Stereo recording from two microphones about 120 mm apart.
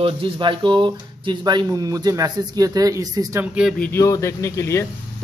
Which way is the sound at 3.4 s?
10° right (ahead or behind).